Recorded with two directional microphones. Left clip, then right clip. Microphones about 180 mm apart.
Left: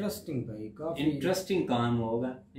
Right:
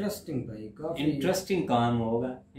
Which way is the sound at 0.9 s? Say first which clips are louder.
Right 2 dB; 20° right (ahead or behind).